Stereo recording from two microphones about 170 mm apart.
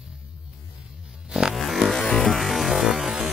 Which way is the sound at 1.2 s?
5° right (ahead or behind).